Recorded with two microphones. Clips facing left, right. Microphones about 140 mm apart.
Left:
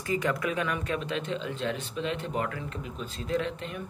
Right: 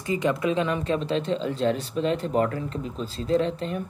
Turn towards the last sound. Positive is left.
turn(degrees=-35)  # may be behind; listen again after turning